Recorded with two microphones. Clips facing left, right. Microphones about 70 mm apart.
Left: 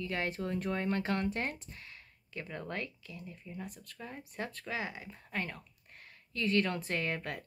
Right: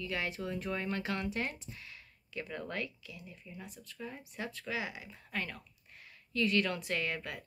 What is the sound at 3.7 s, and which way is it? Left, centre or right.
Speech, left.